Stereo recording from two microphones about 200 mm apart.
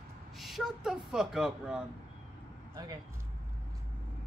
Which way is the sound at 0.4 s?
Centre (ahead or behind).